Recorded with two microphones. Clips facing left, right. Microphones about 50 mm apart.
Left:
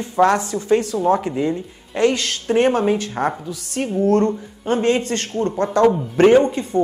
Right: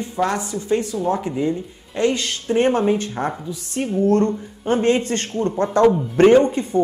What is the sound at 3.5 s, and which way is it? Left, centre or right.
Speech, centre.